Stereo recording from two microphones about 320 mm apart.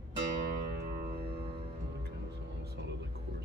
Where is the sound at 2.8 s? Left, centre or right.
Right.